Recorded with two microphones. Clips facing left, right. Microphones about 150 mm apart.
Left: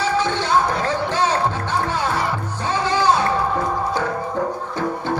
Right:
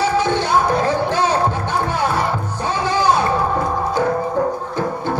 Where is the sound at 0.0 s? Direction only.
15° right (ahead or behind).